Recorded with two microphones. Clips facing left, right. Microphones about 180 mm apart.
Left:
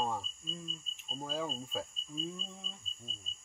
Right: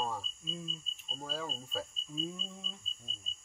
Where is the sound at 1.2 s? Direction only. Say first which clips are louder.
Left 3 dB; 15° left (ahead or behind).